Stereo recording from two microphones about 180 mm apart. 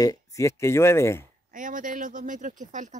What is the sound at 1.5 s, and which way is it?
Speech, 45° right (ahead or behind).